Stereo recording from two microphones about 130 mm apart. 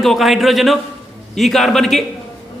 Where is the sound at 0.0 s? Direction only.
Centre (ahead or behind).